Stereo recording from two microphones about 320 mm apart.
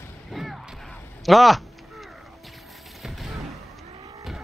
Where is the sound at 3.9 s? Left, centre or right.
Centre.